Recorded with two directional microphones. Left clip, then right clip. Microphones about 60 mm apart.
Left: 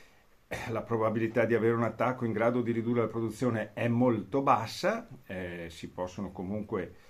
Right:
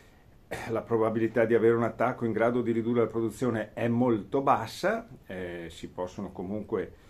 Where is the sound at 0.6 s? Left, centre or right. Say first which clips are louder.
Right 4 dB; right.